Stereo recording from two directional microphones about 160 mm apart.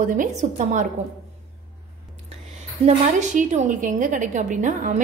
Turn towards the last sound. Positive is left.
turn(degrees=-50)  # may be behind; listen again after turning